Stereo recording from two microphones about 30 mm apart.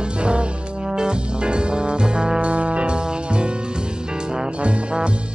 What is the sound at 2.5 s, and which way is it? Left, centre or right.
Music, right.